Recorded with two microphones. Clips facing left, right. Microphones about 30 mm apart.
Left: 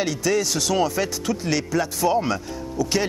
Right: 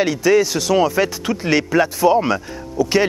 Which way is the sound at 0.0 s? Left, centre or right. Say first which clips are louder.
Right 7 dB; centre.